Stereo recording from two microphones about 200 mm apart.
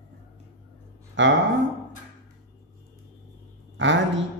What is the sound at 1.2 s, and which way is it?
Speech, 65° right (ahead or behind).